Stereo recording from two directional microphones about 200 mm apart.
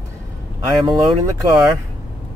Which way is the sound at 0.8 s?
20° right (ahead or behind).